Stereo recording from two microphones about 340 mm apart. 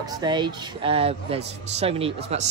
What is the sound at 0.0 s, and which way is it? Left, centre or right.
Speech, centre.